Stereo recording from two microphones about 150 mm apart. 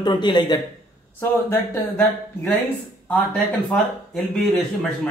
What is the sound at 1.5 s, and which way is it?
Speech, 15° left (ahead or behind).